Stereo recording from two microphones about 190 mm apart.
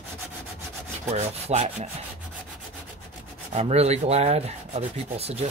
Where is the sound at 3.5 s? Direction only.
35° right (ahead or behind).